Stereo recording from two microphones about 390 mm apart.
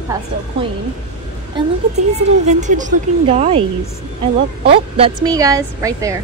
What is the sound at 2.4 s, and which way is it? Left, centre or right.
A woman's voice, centre.